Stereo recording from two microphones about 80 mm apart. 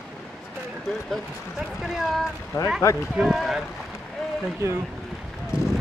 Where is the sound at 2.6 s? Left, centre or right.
Left.